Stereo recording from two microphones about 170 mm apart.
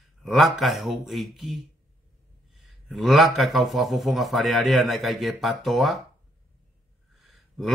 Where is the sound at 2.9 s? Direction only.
Centre (ahead or behind).